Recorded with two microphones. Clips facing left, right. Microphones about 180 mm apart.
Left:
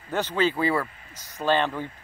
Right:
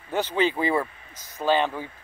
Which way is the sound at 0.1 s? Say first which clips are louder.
Right 1 dB; 10° right (ahead or behind).